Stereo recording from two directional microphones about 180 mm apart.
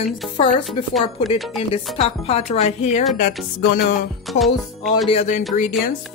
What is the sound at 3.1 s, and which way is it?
Music, 45° left (ahead or behind).